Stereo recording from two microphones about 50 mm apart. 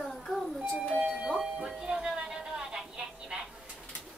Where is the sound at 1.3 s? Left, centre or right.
Centre.